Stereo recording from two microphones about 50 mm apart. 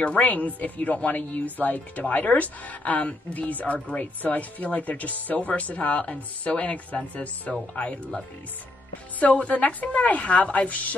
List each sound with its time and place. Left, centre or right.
0.0 s a woman's voice: left
9.2 s a woman's voice: left